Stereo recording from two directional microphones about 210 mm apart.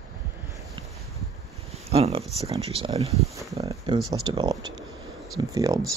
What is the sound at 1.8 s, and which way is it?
Speech, 30° right (ahead or behind).